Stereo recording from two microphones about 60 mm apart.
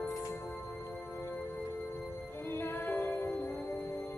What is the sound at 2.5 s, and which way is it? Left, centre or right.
Music, left.